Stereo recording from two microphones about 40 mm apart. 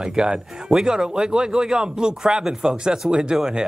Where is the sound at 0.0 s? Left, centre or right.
Centre.